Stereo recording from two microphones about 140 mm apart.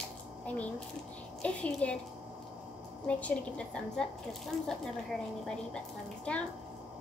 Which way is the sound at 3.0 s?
10° left (ahead or behind).